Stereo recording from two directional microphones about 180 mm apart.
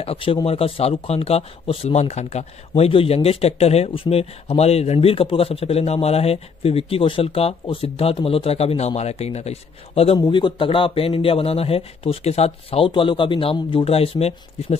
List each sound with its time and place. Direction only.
0.0 s speech: 30° left (ahead or behind)
10.1 s speech: 25° left (ahead or behind)